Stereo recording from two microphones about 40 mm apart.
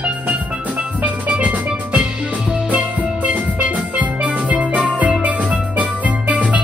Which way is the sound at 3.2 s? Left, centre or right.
Right.